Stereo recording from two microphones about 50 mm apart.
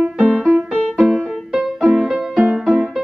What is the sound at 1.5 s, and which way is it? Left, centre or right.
Music, centre.